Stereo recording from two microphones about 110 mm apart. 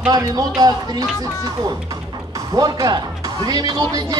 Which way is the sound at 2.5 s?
35° right (ahead or behind).